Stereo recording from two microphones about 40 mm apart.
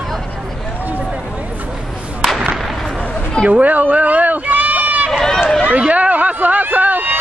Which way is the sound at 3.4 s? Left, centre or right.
Right.